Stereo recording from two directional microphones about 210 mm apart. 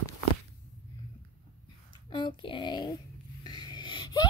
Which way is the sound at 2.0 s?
20° left (ahead or behind).